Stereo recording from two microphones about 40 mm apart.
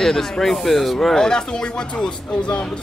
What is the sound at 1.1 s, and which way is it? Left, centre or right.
A man's voice, centre.